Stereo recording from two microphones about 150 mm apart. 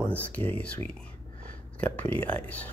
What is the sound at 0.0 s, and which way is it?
Speech, 10° left (ahead or behind).